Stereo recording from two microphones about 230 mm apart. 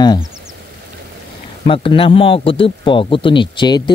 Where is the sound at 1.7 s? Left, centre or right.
Left.